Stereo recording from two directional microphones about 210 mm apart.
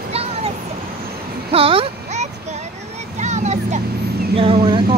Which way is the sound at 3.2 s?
35° right (ahead or behind).